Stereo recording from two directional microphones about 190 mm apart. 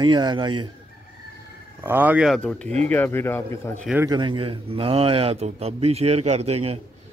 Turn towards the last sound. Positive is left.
turn(degrees=-30)  # may be behind; listen again after turning